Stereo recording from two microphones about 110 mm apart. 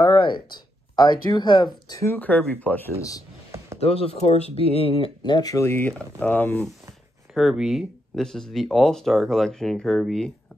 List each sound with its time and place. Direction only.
0.0 s speech: 45° left (ahead or behind)
2.1 s speech: 15° left (ahead or behind)
3.0 s speech: 30° left (ahead or behind)
3.8 s speech: 65° left (ahead or behind)
5.2 s speech: 45° left (ahead or behind)
5.5 s speech: 25° left (ahead or behind)
7.3 s speech: 5° right (ahead or behind)